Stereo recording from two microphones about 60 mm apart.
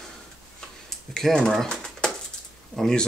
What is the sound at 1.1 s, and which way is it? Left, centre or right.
Speech, centre.